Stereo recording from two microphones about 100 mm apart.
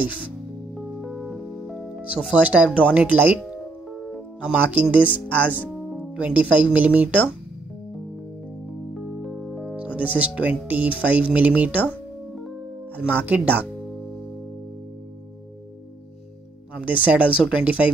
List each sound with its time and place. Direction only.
0.7 s music: centre (ahead or behind)
2.4 s speech: 15° right (ahead or behind)
4.4 s speech: 10° right (ahead or behind)
8.9 s speech: centre (ahead or behind)
12.9 s speech: 15° right (ahead or behind)
16.8 s speech: 15° right (ahead or behind)